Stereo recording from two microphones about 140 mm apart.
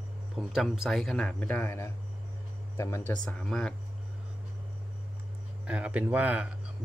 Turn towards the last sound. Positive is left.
turn(degrees=-10)  # may be behind; listen again after turning